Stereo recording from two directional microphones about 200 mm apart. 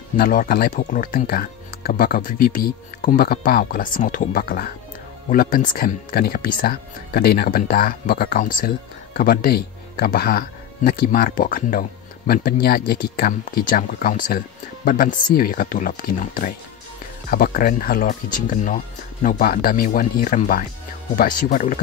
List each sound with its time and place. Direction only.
0.2 s speech: 45° left (ahead or behind)